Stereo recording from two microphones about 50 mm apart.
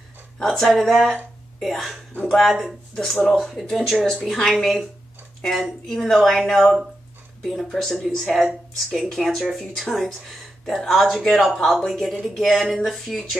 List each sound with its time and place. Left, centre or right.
0.4 s speech: centre
3.3 s speech: centre